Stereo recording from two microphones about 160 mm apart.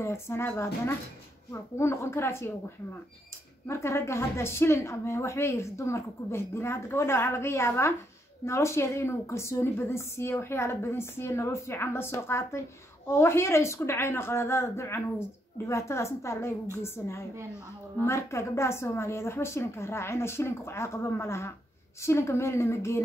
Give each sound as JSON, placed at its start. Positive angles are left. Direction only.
{"t": 0.0, "sound": "a woman's voice", "side_deg": 15}
{"t": 3.6, "sound": "a woman's voice", "side_deg": 15}